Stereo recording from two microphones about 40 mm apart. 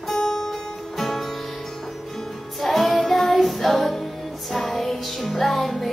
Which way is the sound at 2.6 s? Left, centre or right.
Centre.